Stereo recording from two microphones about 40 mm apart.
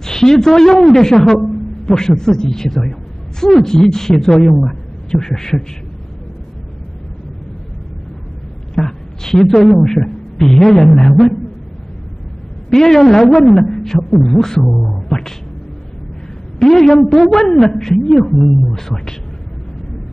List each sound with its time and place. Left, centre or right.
0.0 s a woman's voice: centre
8.7 s a sound: centre
9.4 s speech: centre
12.6 s speech: centre
16.6 s speech: centre